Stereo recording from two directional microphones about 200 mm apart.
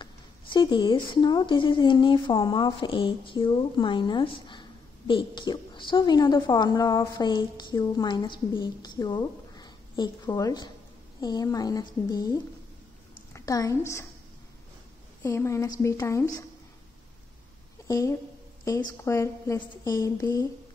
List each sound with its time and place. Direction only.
0.0 s a woman's voice: 25° left (ahead or behind)
15.2 s a woman's voice: 15° left (ahead or behind)
17.8 s a woman's voice: 15° left (ahead or behind)